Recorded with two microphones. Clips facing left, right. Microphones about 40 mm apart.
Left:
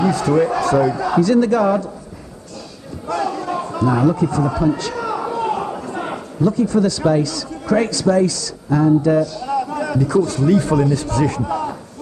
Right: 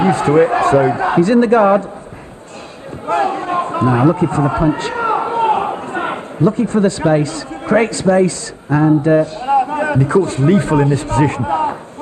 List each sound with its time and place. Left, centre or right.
0.0 s speech: right
3.1 s a man's voice: right